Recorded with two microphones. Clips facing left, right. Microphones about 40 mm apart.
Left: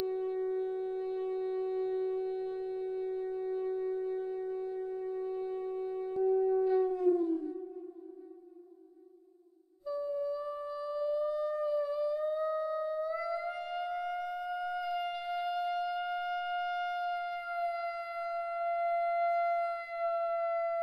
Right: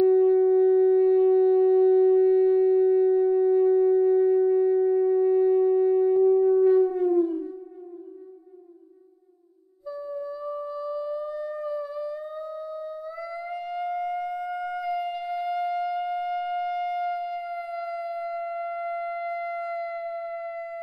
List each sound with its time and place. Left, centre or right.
0.0 s shofar: centre
6.2 s siren: right
9.8 s music: centre
19.9 s sine wave: centre